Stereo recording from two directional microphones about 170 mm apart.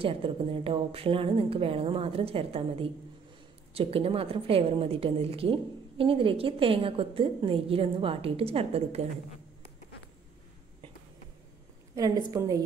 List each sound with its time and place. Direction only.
0.0 s a woman's voice: 30° right (ahead or behind)
11.9 s a woman's voice: 20° right (ahead or behind)